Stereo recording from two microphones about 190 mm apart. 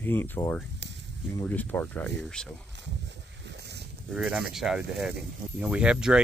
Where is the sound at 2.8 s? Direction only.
65° right (ahead or behind).